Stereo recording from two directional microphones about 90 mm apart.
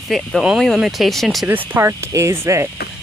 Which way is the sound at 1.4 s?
25° right (ahead or behind).